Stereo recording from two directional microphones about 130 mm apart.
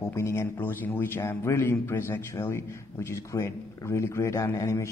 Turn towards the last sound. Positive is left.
turn(degrees=25)  # may be behind; listen again after turning